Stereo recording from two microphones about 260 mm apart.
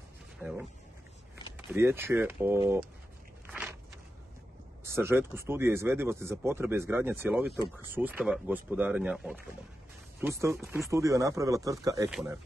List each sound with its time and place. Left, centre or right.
0.4 s speech: centre
1.7 s speech: centre
3.4 s walk: centre
4.8 s speech: centre
12.1 s speech: centre